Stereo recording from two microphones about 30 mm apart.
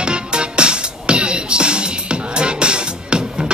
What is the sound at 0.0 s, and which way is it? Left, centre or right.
Music, right.